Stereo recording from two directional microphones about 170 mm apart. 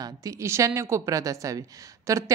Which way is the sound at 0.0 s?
20° right (ahead or behind).